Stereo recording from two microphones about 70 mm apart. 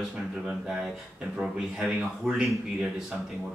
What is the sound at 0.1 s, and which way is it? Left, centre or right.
Speech, centre.